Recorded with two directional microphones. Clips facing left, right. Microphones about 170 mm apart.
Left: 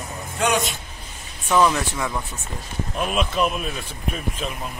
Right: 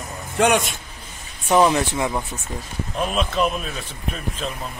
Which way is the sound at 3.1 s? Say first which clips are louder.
Even; 5° left (ahead or behind).